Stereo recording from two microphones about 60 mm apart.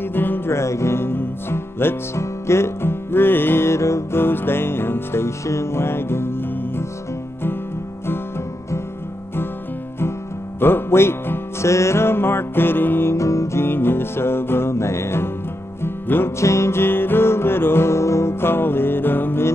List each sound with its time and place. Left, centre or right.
0.1 s music: left
0.6 s music: left
4.2 s music: left
10.6 s music: left
11.7 s music: left
13.1 s music: left
16.3 s music: left